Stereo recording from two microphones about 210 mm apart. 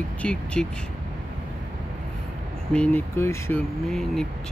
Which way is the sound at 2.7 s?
5° left (ahead or behind).